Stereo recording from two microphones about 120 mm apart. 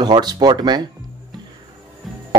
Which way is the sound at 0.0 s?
35° right (ahead or behind).